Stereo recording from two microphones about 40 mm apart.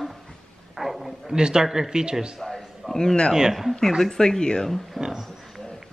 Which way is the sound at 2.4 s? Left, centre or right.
Centre.